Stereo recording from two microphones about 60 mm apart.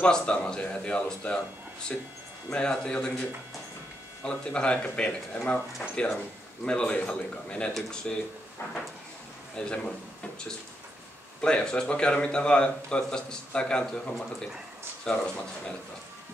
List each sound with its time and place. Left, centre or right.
0.0 s a man's voice: centre
6.6 s a man's voice: centre
9.6 s a man's voice: centre
11.4 s a man's voice: centre